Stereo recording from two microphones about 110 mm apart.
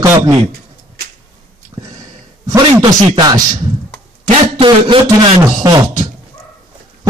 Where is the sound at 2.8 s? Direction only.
40° right (ahead or behind).